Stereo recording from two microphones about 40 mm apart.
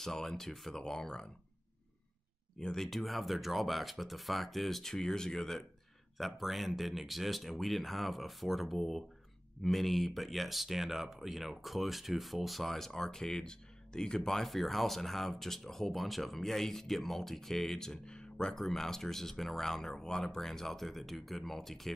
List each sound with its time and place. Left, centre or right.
0.0 s speech: centre
2.6 s speech: centre
2.9 s speech: centre
6.1 s speech: centre; by 18.6 s left
18.6 s speech: centre